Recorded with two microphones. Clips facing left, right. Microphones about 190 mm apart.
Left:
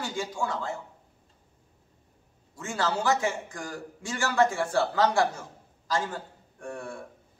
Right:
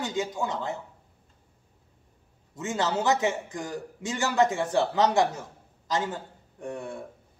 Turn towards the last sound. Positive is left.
turn(degrees=-20)  # may be behind; listen again after turning